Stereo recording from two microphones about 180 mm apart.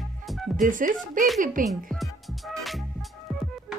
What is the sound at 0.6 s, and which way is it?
Speech, 45° right (ahead or behind).